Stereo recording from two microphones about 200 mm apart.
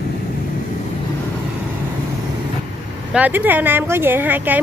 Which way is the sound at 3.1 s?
10° right (ahead or behind).